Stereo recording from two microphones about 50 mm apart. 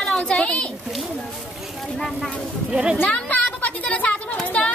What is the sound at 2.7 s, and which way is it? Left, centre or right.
Speech, centre.